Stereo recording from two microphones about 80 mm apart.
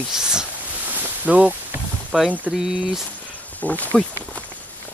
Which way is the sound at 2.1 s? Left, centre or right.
Centre.